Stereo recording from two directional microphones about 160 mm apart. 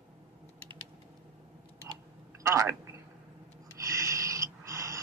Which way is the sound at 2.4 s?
20° right (ahead or behind).